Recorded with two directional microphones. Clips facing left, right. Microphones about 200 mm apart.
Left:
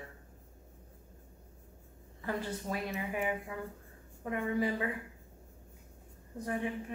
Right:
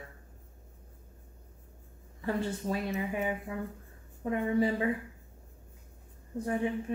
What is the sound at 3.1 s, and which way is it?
A woman's voice, 30° right (ahead or behind).